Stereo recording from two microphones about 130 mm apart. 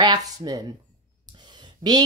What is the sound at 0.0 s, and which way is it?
Speech, 35° right (ahead or behind).